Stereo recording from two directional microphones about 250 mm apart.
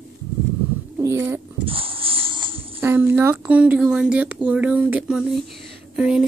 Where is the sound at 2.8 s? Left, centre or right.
Centre.